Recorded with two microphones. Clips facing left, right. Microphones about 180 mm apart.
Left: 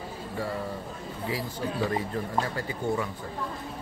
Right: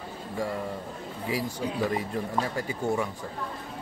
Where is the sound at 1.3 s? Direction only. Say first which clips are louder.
Right 2 dB; 15° right (ahead or behind).